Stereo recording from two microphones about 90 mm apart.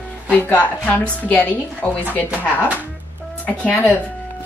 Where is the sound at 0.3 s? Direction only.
20° left (ahead or behind).